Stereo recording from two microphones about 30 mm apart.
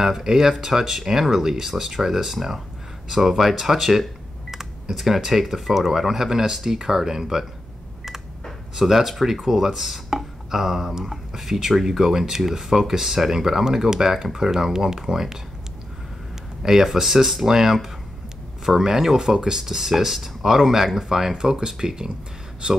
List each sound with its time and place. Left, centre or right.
0.0 s speech: centre
8.7 s speech: centre
16.6 s speech: centre
19.6 s speech: centre
21.4 s speech: right